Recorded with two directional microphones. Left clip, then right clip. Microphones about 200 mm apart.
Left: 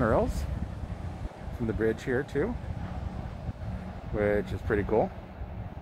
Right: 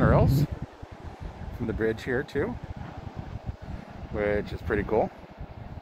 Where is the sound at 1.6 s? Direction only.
5° left (ahead or behind).